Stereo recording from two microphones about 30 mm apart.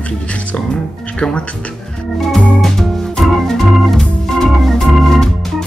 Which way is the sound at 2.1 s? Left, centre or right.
Centre.